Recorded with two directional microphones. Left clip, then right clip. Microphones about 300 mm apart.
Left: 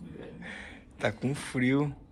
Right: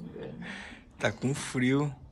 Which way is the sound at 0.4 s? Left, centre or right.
Centre.